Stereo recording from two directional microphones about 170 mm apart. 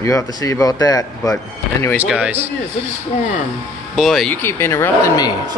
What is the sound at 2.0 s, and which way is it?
Speech, 10° right (ahead or behind).